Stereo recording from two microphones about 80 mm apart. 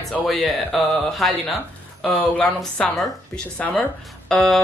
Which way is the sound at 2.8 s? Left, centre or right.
Centre.